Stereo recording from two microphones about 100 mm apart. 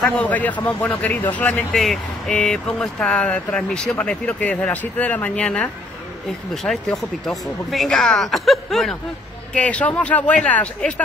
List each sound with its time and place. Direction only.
0.0 s speech: 15° left (ahead or behind)
1.7 s speech: centre (ahead or behind)
9.5 s speech: 10° left (ahead or behind)